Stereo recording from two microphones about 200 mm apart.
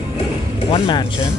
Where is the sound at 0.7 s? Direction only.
25° left (ahead or behind).